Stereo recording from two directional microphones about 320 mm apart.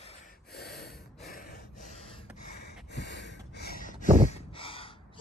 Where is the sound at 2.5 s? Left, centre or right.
Left.